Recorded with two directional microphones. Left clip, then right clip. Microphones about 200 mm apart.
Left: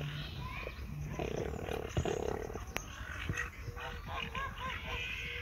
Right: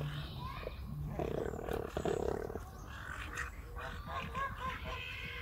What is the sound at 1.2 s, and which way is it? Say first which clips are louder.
Roaring cats: even; 10° right (ahead or behind).